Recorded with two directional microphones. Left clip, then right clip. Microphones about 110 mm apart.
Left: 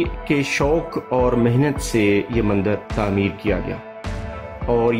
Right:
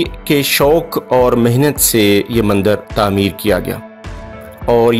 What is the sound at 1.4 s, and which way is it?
Speech, 30° right (ahead or behind).